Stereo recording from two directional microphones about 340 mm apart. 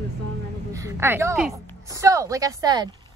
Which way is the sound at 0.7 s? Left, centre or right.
Centre.